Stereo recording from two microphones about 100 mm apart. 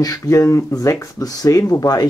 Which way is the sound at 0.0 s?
35° left (ahead or behind).